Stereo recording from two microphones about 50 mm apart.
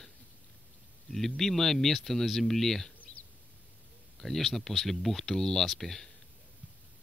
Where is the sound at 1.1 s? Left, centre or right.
Centre.